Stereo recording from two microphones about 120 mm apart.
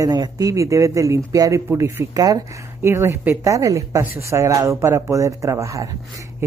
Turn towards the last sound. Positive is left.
turn(degrees=-25)  # may be behind; listen again after turning